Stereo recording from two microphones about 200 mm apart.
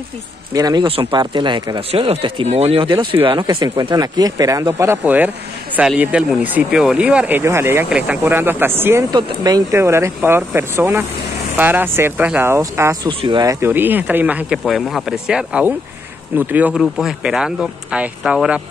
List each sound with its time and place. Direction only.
0.5 s speech: 20° right (ahead or behind)